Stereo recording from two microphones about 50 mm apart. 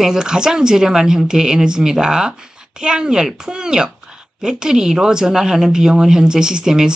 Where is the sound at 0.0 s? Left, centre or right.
Centre.